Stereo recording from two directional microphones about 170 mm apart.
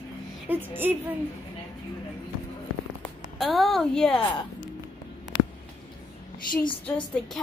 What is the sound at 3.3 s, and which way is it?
Speech, centre (ahead or behind).